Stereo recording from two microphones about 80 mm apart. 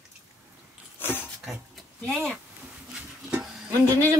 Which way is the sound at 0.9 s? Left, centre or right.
Left.